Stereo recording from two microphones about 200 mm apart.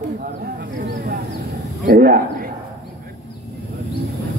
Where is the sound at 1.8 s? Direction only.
50° right (ahead or behind).